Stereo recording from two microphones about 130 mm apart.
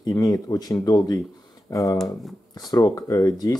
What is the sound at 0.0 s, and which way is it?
Speech, 30° left (ahead or behind).